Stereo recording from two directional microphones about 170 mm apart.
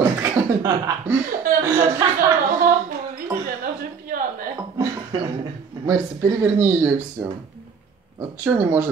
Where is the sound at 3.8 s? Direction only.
55° right (ahead or behind).